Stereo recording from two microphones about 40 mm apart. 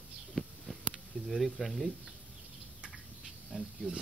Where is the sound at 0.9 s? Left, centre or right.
Centre.